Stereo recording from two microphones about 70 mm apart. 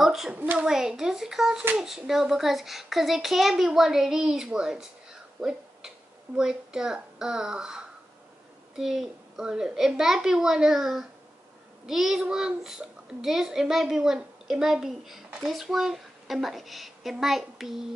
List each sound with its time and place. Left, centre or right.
0.0 s a child's voice: centre
0.3 s a child's voice: right
0.7 s a child's voice: centre
5.4 s a sound: centre
6.3 s a child's voice: centre